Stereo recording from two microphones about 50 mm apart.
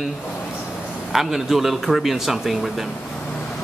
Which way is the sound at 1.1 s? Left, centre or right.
Centre.